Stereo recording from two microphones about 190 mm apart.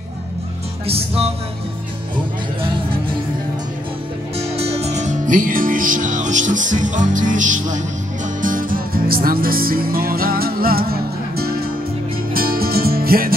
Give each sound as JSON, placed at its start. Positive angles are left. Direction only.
{"t": 0.8, "sound": "music", "side_deg": -30}
{"t": 4.4, "sound": "music", "side_deg": -30}